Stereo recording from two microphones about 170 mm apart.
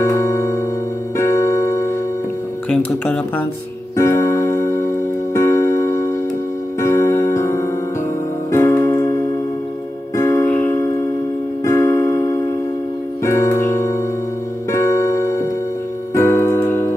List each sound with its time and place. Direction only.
0.0 s music: 15° left (ahead or behind)
2.7 s speech: 5° left (ahead or behind)
3.9 s keyboard: 15° left (ahead or behind)
5.3 s music: 15° left (ahead or behind)
10.1 s music: 15° left (ahead or behind)
11.6 s keyboard: 15° left (ahead or behind)
13.2 s music: 15° left (ahead or behind)